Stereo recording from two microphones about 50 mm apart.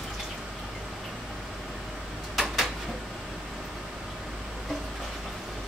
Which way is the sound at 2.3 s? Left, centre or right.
Centre.